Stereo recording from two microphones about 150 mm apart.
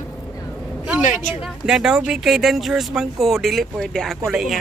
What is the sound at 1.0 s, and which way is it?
Speech, 55° left (ahead or behind).